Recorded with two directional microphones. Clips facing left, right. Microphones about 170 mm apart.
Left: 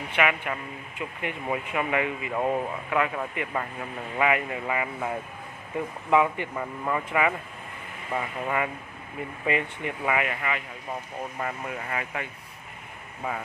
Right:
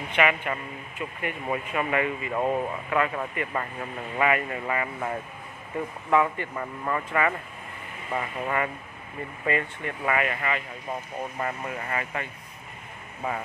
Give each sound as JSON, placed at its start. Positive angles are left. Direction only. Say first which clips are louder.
{"t": 0.1, "sound": "speech", "louder": "right 2 dB", "side_deg": 5}
{"t": 2.3, "sound": "speech", "louder": "even", "side_deg": 0}
{"t": 6.5, "sound": "speech", "louder": "left 1 dB", "side_deg": 5}
{"t": 9.5, "sound": "speech", "louder": "even", "side_deg": 15}